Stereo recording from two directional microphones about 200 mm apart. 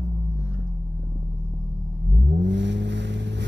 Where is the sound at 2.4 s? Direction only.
60° right (ahead or behind).